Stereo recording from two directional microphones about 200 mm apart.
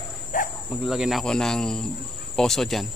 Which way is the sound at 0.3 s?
40° left (ahead or behind).